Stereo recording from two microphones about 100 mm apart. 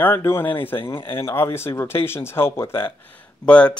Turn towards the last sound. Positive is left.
turn(degrees=10)  # may be behind; listen again after turning